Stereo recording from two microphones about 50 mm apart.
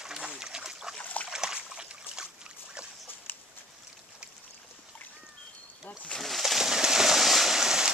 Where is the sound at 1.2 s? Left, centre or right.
Centre.